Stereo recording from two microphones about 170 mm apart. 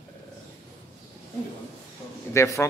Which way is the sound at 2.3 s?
15° left (ahead or behind).